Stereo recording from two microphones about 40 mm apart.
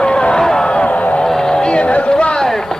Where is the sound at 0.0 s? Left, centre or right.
Left.